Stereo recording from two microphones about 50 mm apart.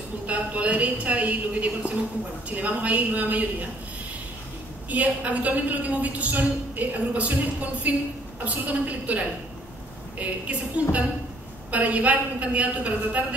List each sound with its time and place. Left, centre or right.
0.3 s a woman's voice: right
4.8 s a woman's voice: right